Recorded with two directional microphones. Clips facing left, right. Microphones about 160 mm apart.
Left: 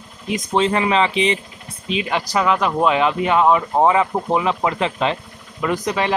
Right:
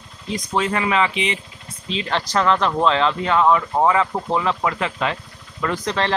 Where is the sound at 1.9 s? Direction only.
15° left (ahead or behind).